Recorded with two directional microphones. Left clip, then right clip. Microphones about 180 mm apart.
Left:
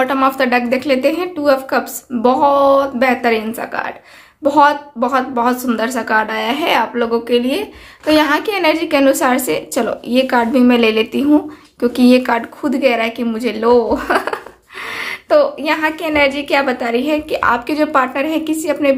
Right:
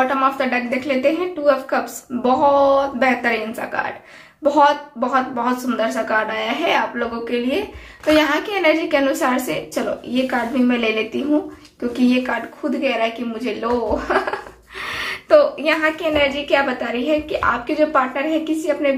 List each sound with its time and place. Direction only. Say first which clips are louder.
0.0 s a woman's voice: left 3 dB; 55° left (ahead or behind)
14.8 s a woman's voice: left 2 dB; 30° left (ahead or behind); by 18.9 s 55° left (ahead or behind)